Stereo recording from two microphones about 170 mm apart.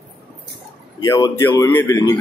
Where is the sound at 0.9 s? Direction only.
25° left (ahead or behind).